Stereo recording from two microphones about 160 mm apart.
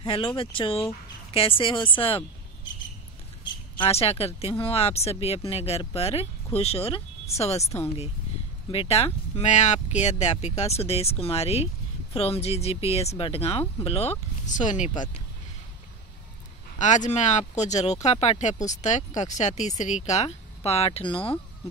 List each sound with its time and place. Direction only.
0.0 s speech: 30° left (ahead or behind)
3.7 s speech: 35° left (ahead or behind)
8.7 s speech: 40° left (ahead or behind)
14.4 s speech: 50° left (ahead or behind)
16.7 s speech: 50° left (ahead or behind)